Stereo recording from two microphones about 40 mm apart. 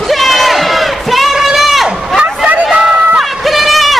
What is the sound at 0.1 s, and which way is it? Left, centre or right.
Crowd, centre.